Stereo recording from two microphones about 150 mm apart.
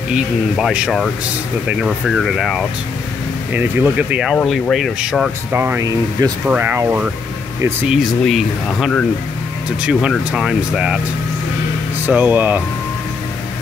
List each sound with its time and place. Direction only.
0.1 s speech: 5° right (ahead or behind)
3.5 s speech: 15° right (ahead or behind)
5.5 s speech: 15° right (ahead or behind)
8.0 s speech: centre (ahead or behind)
10.1 s speech: centre (ahead or behind)
12.1 s speech: 10° right (ahead or behind)